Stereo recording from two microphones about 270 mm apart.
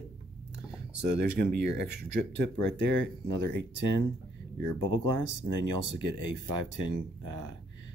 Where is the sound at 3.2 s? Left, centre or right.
Right.